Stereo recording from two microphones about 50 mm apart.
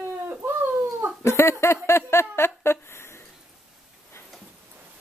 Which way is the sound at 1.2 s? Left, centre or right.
Left.